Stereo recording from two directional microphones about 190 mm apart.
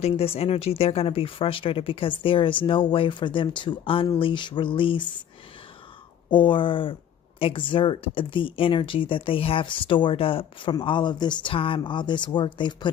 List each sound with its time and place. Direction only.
0.0 s speech: 30° left (ahead or behind)
6.3 s speech: 25° left (ahead or behind)